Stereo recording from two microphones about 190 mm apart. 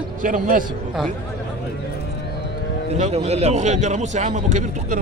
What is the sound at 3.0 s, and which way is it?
A man's voice, 35° right (ahead or behind).